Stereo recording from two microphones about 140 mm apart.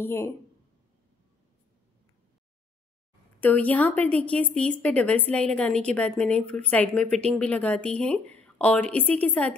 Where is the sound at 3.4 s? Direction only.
10° left (ahead or behind).